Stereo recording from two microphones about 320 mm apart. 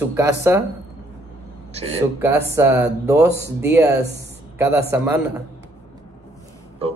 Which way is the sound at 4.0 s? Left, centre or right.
Right.